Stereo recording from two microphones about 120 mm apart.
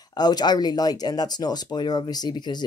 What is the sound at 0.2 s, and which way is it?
Speech, 35° left (ahead or behind).